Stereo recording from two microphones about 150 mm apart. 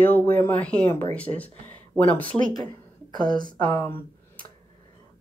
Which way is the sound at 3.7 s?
15° left (ahead or behind).